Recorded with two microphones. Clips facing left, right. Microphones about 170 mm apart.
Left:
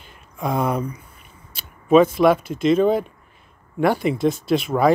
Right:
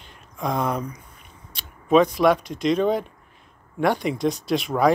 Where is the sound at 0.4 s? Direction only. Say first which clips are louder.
Left 3 dB; 5° left (ahead or behind).